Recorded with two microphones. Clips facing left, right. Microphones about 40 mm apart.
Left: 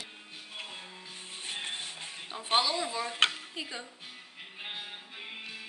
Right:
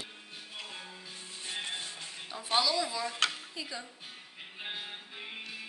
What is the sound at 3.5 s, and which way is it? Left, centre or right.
Speech, left.